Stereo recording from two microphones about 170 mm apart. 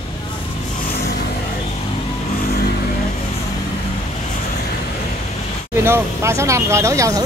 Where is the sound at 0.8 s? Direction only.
65° left (ahead or behind).